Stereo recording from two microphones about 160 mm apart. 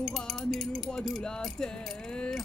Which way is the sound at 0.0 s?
Centre (ahead or behind).